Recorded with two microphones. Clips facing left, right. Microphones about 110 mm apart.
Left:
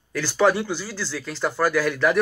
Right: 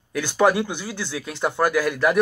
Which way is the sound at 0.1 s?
15° right (ahead or behind).